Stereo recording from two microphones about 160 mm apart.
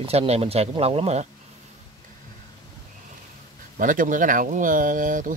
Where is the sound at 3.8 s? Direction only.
55° right (ahead or behind).